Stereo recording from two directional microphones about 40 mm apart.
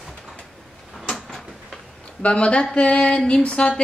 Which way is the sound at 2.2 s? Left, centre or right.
Left.